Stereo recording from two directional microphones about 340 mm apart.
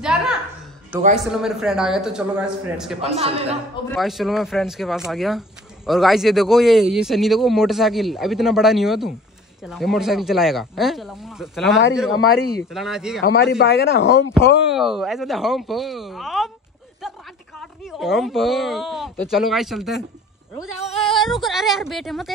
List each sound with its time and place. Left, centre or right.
0.0 s a sound: centre
1.1 s a man's voice: centre
3.0 s a man's voice: centre
3.9 s a man's voice: centre
13.2 s speech: left
14.7 s a man's voice: centre
17.6 s a man's voice: centre
21.0 s a man's voice: centre